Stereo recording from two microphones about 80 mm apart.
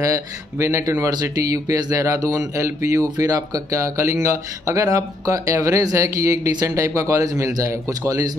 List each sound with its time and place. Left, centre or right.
0.0 s speech: right